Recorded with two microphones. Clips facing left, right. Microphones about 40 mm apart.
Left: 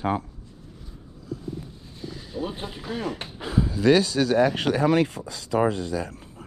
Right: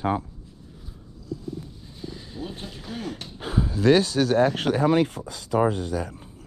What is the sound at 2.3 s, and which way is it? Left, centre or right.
Speech, left.